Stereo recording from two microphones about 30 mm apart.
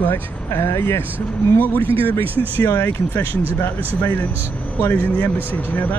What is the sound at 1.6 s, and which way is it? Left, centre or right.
Speech, left.